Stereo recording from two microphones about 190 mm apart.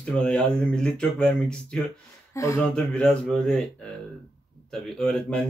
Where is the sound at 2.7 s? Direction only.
5° left (ahead or behind).